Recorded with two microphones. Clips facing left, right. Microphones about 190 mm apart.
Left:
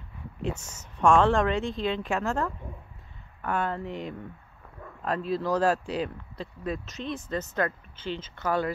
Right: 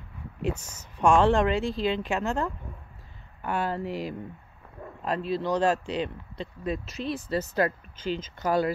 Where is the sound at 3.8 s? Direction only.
5° right (ahead or behind).